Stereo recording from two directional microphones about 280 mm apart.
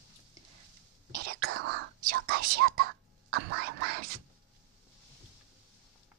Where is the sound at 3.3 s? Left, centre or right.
Right.